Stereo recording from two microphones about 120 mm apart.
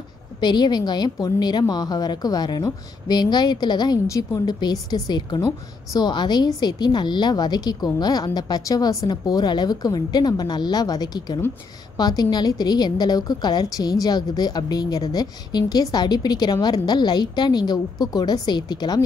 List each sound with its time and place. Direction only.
0.4 s a woman's voice: 40° left (ahead or behind)